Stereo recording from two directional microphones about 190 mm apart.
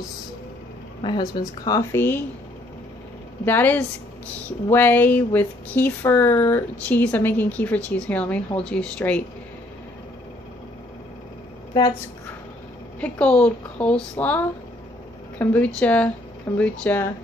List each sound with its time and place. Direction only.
1.0 s a woman's voice: 25° left (ahead or behind)
3.4 s speech: 10° left (ahead or behind)
13.0 s speech: 5° left (ahead or behind)